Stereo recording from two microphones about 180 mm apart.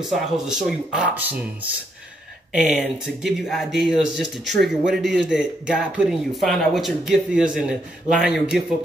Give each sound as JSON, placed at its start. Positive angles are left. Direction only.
{"t": 0.1, "sound": "speech", "side_deg": -5}